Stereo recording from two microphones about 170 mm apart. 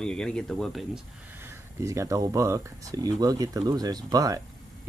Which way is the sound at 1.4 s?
15° right (ahead or behind).